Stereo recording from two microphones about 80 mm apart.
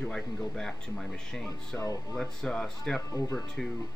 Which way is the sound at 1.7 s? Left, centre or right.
Left.